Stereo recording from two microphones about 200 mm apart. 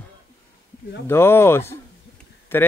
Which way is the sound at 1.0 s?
10° left (ahead or behind).